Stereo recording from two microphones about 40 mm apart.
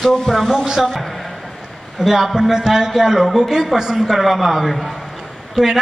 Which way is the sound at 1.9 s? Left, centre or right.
Centre.